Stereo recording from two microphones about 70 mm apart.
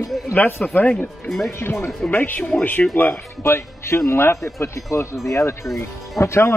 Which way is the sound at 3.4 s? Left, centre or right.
Left.